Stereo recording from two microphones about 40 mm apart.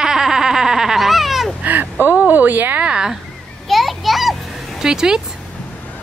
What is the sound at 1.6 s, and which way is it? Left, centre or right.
Speech, right.